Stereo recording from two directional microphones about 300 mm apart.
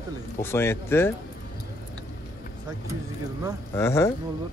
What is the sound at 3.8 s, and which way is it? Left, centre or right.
Speech, centre.